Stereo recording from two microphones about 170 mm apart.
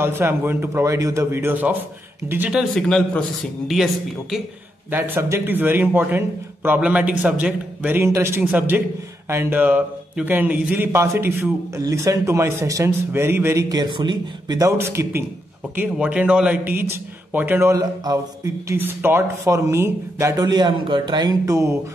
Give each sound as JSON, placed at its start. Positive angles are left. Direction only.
{"t": 0.0, "sound": "speech", "side_deg": -15}
{"t": 4.9, "sound": "speech", "side_deg": -10}